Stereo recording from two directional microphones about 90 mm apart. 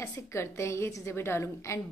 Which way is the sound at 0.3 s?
30° left (ahead or behind).